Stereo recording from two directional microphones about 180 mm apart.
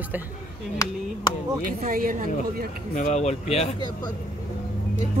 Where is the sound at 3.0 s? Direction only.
40° left (ahead or behind).